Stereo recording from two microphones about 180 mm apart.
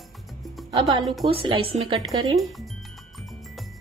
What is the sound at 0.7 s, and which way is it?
Speech, 25° right (ahead or behind).